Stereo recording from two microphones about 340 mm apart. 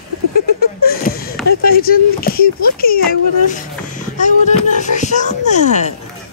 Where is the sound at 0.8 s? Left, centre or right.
Left.